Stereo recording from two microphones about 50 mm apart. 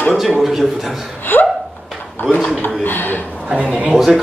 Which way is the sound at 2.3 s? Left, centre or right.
Left.